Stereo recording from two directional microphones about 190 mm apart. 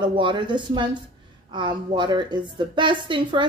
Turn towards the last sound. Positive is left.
turn(degrees=-25)  # may be behind; listen again after turning